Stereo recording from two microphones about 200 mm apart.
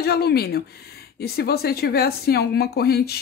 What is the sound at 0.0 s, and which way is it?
Speech, 50° left (ahead or behind).